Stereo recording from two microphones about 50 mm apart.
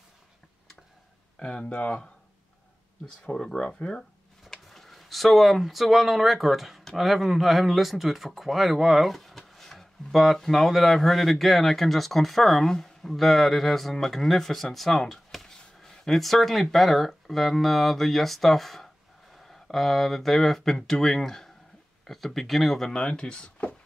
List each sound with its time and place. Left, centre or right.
1.4 s speech: left
3.3 s speech: centre
22.8 s speech: centre